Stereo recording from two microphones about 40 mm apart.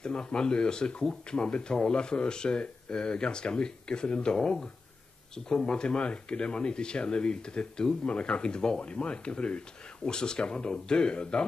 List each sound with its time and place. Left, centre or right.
0.0 s speech: left